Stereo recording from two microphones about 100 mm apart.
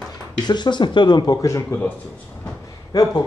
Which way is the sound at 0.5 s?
50° left (ahead or behind).